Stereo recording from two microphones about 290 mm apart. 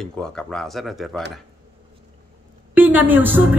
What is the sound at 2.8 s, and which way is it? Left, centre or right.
Speech, centre.